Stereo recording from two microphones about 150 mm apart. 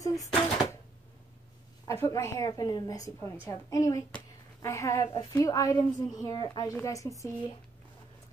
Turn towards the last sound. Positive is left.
turn(degrees=20)  # may be behind; listen again after turning